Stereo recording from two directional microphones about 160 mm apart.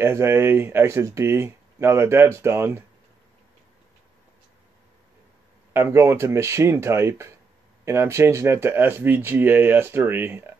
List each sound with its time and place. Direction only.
0.0 s speech: 15° right (ahead or behind)
5.7 s speech: 15° right (ahead or behind)